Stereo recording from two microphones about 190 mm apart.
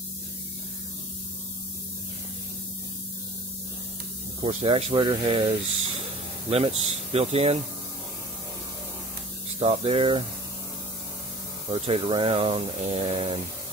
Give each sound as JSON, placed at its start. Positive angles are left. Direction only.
{"t": 4.4, "sound": "speech", "side_deg": -30}
{"t": 6.5, "sound": "speech", "side_deg": -30}
{"t": 9.6, "sound": "speech", "side_deg": -30}
{"t": 11.7, "sound": "speech", "side_deg": -30}